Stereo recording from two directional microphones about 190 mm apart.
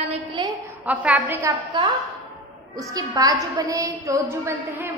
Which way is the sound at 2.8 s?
20° right (ahead or behind).